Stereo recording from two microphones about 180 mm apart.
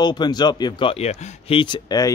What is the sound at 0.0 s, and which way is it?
Speech, 25° left (ahead or behind).